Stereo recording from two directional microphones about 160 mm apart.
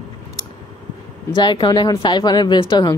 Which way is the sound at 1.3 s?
30° left (ahead or behind).